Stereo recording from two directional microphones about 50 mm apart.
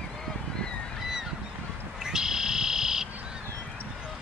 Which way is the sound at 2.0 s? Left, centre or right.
Centre.